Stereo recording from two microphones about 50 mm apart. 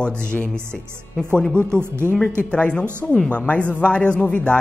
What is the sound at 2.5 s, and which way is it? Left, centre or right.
Speech, left.